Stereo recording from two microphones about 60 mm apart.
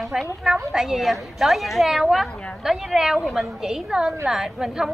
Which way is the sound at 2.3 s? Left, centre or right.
Centre.